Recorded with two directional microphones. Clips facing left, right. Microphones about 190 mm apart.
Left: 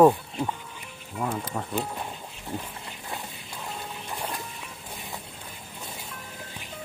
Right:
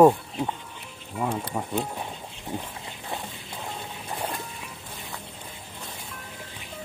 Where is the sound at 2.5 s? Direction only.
15° right (ahead or behind).